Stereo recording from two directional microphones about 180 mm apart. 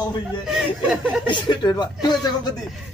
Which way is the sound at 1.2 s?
25° left (ahead or behind).